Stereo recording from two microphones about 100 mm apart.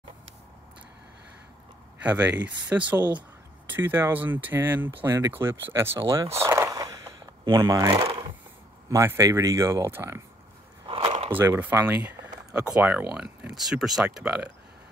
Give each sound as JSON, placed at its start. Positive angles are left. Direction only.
{"t": 2.0, "sound": "speech", "side_deg": -15}
{"t": 6.0, "sound": "a sound", "side_deg": -30}
{"t": 7.5, "sound": "speech", "side_deg": -35}
{"t": 11.2, "sound": "speech", "side_deg": -20}